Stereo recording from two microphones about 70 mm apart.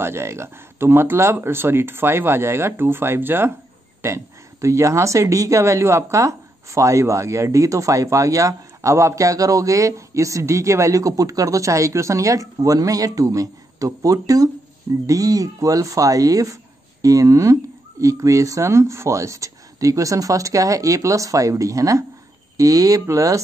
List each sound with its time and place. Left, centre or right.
0.0 s speech: right
4.0 s speech: right